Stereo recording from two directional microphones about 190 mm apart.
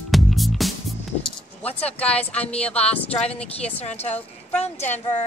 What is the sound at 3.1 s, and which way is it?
Speech, 35° left (ahead or behind).